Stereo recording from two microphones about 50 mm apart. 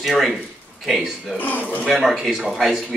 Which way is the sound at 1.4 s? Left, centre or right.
Left.